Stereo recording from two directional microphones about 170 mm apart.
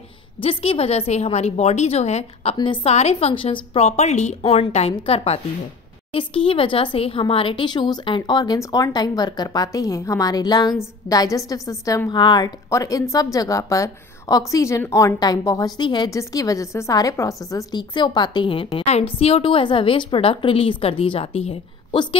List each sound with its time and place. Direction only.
0.4 s a woman's voice: 35° left (ahead or behind)
2.5 s a woman's voice: 30° left (ahead or behind)